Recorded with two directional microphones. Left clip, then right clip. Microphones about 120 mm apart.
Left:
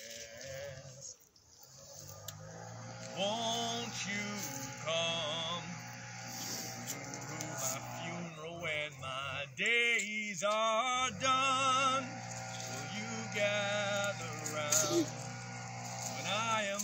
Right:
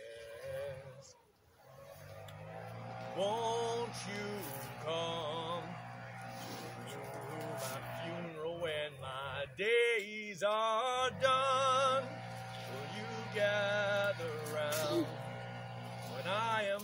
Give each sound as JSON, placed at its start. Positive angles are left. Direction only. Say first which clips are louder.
{"t": 3.2, "sound": "music", "louder": "even", "side_deg": -30}
{"t": 7.5, "sound": "vehicle", "louder": "left 1 dB", "side_deg": -20}
{"t": 12.7, "sound": "music", "louder": "even", "side_deg": -25}
{"t": 16.3, "sound": "a sound", "louder": "even", "side_deg": -30}